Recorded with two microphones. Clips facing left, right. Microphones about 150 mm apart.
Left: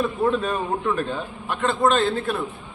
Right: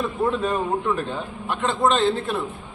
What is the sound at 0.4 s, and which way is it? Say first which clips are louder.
A man's voice: right 2 dB; 15° right (ahead or behind).